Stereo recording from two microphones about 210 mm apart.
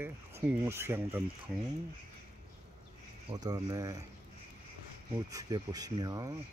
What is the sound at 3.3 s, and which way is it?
Speech, 20° right (ahead or behind).